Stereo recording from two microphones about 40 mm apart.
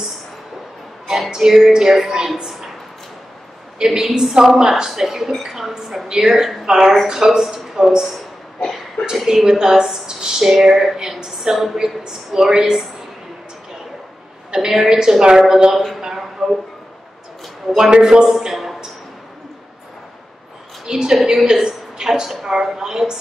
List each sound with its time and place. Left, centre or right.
1.3 s a woman's voice: centre
3.7 s a woman's voice: centre
8.5 s a sound: left
9.1 s a woman's voice: centre
14.7 s a woman's voice: centre
16.4 s a sound: centre
17.9 s a man's voice: right
18.5 s a sound: centre
20.8 s a woman's voice: centre